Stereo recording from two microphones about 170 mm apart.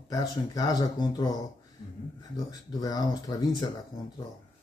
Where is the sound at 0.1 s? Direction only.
20° left (ahead or behind).